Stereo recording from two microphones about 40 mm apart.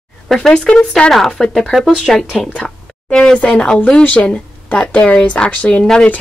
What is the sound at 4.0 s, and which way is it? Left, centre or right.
Speech, left.